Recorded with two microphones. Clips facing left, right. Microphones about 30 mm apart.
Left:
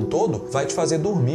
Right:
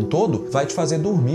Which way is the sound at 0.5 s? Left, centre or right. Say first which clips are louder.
Right 1 dB; centre.